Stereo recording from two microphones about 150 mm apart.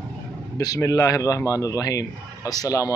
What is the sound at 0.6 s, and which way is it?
A man's voice, 25° left (ahead or behind).